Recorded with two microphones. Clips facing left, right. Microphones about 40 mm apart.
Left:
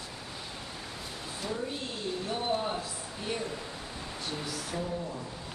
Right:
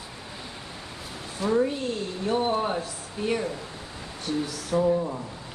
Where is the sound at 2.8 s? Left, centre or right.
Right.